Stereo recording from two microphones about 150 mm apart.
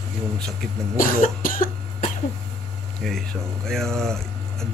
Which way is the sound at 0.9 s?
65° left (ahead or behind).